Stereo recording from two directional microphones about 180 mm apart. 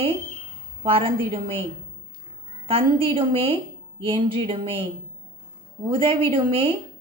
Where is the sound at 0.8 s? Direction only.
30° right (ahead or behind).